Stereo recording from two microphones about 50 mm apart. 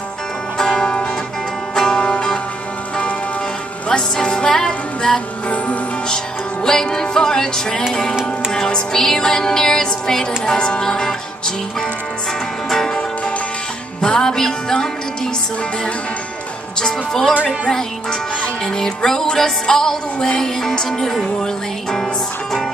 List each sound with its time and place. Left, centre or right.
0.6 s music: centre
3.9 s music: centre
12.6 s music: centre
14.0 s music: centre
16.8 s music: centre
18.8 s music: centre